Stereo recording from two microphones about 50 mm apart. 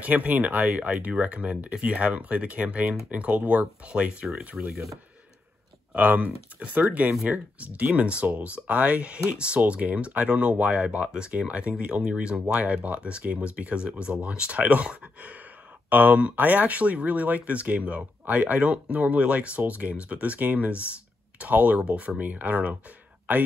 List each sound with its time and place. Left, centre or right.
0.0 s speech: right
4.6 s a sound: centre
5.9 s speech: right
22.2 s speech: right